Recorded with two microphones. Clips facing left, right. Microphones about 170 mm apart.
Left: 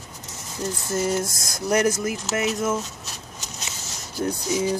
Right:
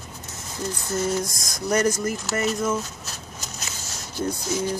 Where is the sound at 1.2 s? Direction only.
25° left (ahead or behind).